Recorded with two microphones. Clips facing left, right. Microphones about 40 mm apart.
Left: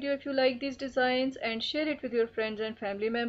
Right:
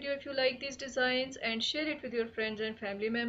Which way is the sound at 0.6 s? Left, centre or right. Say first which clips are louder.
Left 6 dB; left.